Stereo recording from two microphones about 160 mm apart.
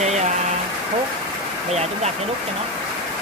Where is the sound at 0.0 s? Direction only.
45° right (ahead or behind).